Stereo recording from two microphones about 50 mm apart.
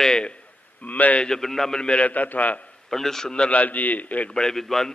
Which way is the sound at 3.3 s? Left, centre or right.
Left.